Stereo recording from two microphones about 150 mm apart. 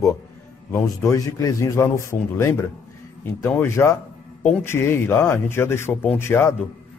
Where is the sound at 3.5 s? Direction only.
15° left (ahead or behind).